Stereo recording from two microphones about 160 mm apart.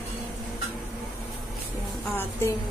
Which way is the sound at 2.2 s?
15° left (ahead or behind).